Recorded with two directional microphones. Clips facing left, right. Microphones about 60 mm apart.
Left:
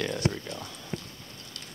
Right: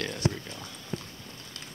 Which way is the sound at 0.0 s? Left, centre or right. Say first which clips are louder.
Left 1 dB; centre.